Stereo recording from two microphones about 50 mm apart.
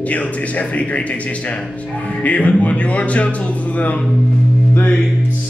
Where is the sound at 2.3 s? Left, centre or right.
Left.